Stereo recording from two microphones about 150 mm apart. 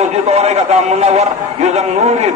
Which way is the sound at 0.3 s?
45° right (ahead or behind).